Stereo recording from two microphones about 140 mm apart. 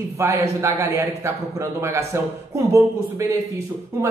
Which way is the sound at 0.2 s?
20° right (ahead or behind).